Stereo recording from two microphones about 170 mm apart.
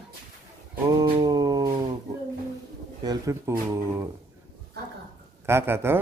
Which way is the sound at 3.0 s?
20° right (ahead or behind).